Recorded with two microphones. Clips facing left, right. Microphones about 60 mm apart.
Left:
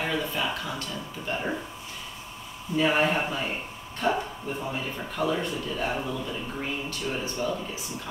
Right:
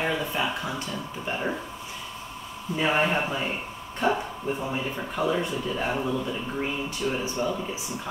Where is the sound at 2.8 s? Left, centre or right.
Centre.